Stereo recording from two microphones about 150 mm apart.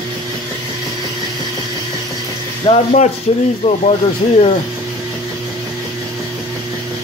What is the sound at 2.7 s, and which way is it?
Speech, 30° left (ahead or behind).